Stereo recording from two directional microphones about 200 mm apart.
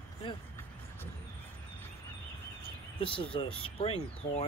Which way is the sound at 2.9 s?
25° left (ahead or behind).